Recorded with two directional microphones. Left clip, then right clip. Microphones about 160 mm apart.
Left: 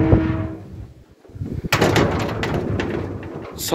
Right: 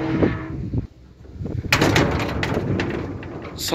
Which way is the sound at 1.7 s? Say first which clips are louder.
Left 1 dB; 20° right (ahead or behind).